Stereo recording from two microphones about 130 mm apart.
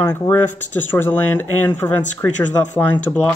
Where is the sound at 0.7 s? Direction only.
15° left (ahead or behind).